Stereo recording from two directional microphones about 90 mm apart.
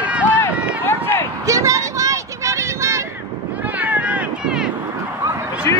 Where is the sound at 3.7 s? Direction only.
15° right (ahead or behind).